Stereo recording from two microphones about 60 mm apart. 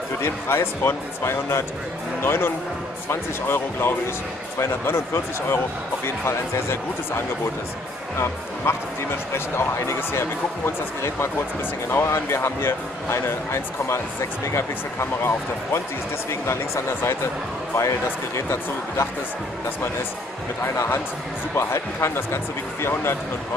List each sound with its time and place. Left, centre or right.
0.2 s speech: left
20.7 s speech: left
21.5 s speech: left